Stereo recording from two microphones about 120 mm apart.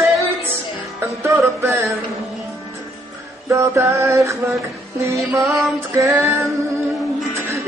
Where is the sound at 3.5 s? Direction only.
25° right (ahead or behind).